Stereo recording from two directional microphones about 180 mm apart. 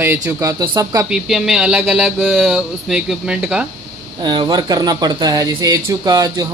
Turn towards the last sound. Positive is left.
turn(degrees=-20)  # may be behind; listen again after turning